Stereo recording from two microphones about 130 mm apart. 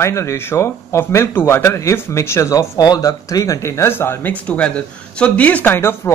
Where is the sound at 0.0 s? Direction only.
20° left (ahead or behind).